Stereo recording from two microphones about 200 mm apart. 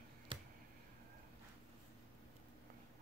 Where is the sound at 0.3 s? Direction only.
25° right (ahead or behind).